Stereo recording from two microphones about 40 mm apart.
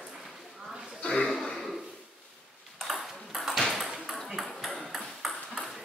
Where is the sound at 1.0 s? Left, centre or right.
Left.